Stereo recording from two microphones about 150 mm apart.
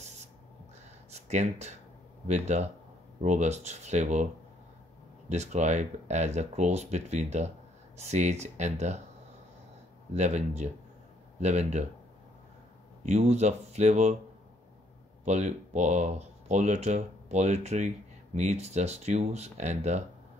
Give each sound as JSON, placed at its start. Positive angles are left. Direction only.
{"t": 1.1, "sound": "speech", "side_deg": -45}
{"t": 5.3, "sound": "speech", "side_deg": -50}
{"t": 10.1, "sound": "speech", "side_deg": -50}
{"t": 13.0, "sound": "speech", "side_deg": -45}
{"t": 15.2, "sound": "speech", "side_deg": -50}